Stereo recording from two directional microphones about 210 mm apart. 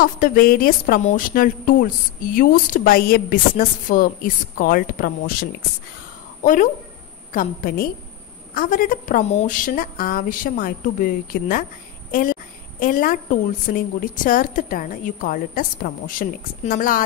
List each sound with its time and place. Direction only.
0.0 s a woman's voice: 40° left (ahead or behind)
12.1 s a sound: 40° left (ahead or behind)
12.8 s a woman's voice: 40° left (ahead or behind)